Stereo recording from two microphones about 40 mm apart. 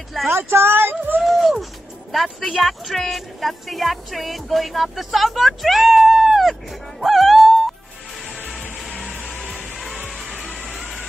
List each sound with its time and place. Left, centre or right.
0.3 s speech: right
1.2 s music: centre
2.1 s speech: centre
7.0 s music: centre
9.3 s music: centre